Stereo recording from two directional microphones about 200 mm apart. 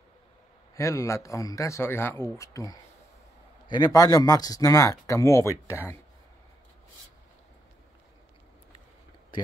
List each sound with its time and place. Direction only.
0.7 s speech: 15° left (ahead or behind)